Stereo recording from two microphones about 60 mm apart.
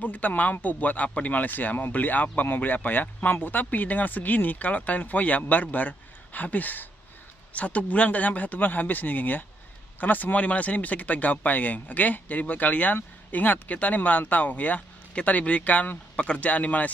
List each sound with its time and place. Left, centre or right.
0.0 s speech: left